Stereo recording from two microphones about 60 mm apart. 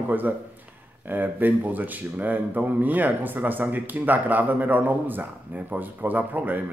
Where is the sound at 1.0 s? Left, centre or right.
Right.